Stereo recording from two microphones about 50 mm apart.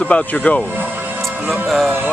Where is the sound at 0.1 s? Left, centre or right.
Left.